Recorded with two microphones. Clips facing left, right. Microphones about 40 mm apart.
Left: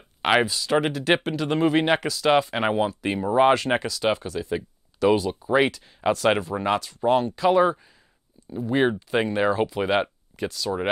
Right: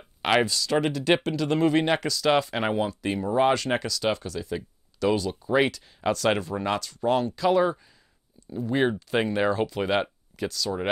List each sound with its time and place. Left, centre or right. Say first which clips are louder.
0.2 s speech: left 2 dB; centre